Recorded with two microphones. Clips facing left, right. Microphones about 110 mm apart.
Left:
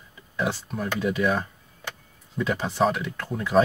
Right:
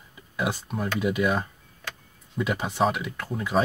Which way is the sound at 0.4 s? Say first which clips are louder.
Left 1 dB; 15° right (ahead or behind).